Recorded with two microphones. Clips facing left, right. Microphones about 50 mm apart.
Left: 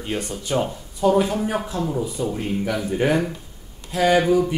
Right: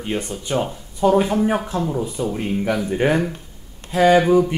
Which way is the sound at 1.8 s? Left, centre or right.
Centre.